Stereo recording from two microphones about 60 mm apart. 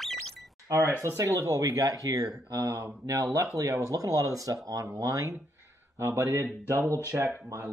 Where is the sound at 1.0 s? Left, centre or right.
Right.